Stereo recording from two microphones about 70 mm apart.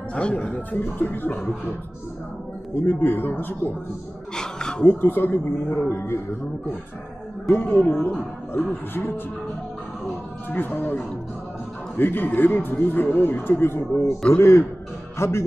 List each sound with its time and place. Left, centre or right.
0.1 s speech: centre
2.7 s a man's voice: left
4.4 s a sound: centre
4.8 s a man's voice: left
7.5 s a man's voice: left
10.5 s a man's voice: left
14.4 s a man's voice: left